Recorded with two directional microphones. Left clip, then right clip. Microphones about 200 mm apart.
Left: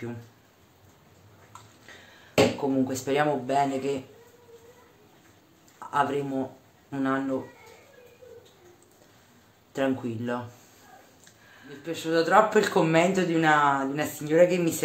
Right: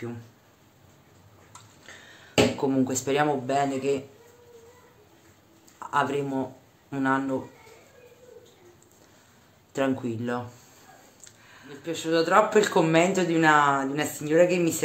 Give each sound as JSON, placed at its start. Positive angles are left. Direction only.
{"t": 2.7, "sound": "speech", "side_deg": -20}
{"t": 5.9, "sound": "speech", "side_deg": -15}
{"t": 9.7, "sound": "speech", "side_deg": -15}
{"t": 11.8, "sound": "speech", "side_deg": -15}